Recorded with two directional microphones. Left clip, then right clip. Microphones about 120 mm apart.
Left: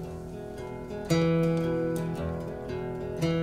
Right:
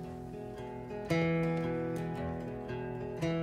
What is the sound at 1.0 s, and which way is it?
Music, 45° left (ahead or behind).